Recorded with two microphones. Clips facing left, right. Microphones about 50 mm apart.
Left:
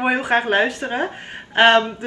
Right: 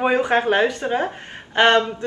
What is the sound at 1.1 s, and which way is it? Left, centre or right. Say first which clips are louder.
Speech: left 1 dB; centre.